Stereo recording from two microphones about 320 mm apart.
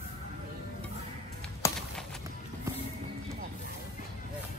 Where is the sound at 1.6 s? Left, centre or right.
Centre.